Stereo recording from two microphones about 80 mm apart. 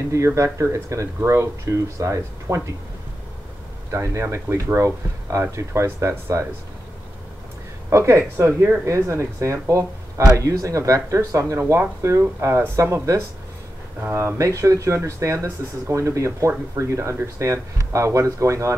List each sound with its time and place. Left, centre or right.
0.1 s speech: right
3.9 s speech: right
7.9 s speech: right